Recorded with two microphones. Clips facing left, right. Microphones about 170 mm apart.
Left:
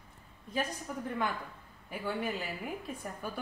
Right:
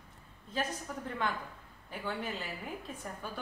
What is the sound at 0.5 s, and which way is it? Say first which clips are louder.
Speech: left 1 dB; 10° left (ahead or behind).